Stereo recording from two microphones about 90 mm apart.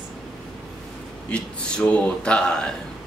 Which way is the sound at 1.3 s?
15° left (ahead or behind).